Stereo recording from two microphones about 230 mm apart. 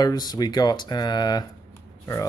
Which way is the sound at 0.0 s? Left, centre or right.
Centre.